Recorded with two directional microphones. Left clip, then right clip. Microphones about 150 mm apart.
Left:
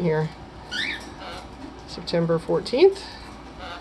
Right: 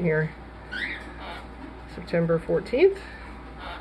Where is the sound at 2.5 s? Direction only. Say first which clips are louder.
Left 2 dB; 30° left (ahead or behind).